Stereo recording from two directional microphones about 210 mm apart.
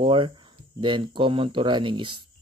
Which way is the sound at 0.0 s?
25° right (ahead or behind).